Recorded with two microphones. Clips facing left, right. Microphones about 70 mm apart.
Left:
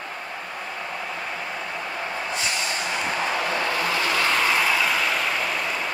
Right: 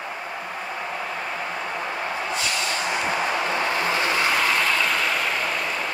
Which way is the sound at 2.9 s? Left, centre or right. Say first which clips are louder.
Right 1 dB; centre.